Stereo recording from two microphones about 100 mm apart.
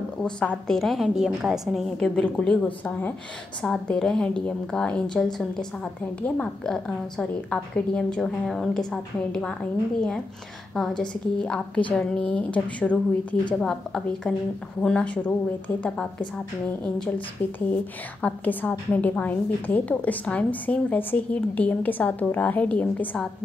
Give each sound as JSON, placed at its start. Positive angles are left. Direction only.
{"t": 0.2, "sound": "a woman's voice", "side_deg": 10}
{"t": 10.7, "sound": "a woman's voice", "side_deg": 5}
{"t": 17.4, "sound": "a woman's voice", "side_deg": 15}